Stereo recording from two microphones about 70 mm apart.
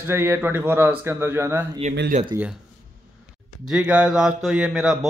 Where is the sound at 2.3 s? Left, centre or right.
Right.